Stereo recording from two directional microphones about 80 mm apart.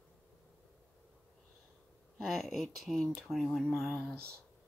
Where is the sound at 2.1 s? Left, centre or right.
Centre.